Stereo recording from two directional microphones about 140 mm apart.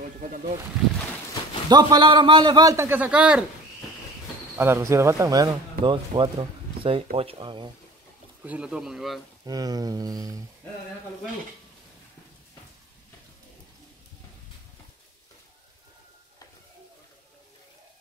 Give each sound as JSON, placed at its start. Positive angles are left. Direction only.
{"t": 0.2, "sound": "speech", "side_deg": -70}
{"t": 1.7, "sound": "a man's voice", "side_deg": -30}
{"t": 4.6, "sound": "a man's voice", "side_deg": -20}
{"t": 5.8, "sound": "speech", "side_deg": -35}
{"t": 8.5, "sound": "speech", "side_deg": -5}
{"t": 9.5, "sound": "a man's voice", "side_deg": -25}